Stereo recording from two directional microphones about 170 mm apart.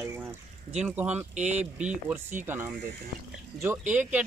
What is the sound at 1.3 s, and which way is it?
Speech, 45° right (ahead or behind).